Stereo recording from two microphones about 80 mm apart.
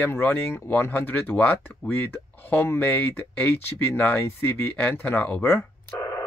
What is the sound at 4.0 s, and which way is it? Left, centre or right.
Speech, left.